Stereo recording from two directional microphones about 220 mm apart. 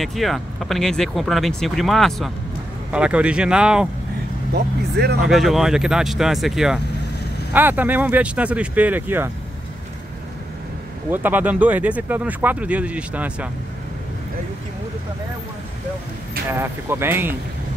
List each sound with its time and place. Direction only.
0.0 s speech: centre (ahead or behind)
4.9 s speech: 45° right (ahead or behind)
5.2 s speech: centre (ahead or behind)
11.1 s speech: 10° right (ahead or behind)
16.4 s speech: 10° right (ahead or behind)